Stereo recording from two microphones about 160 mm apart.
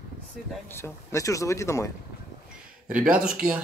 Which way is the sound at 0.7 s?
15° left (ahead or behind).